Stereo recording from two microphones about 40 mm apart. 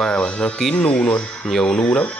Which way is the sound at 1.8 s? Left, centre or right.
Left.